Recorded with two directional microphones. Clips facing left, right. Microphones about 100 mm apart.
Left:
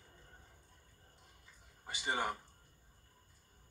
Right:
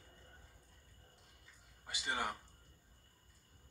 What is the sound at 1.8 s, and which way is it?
Speech, 25° left (ahead or behind).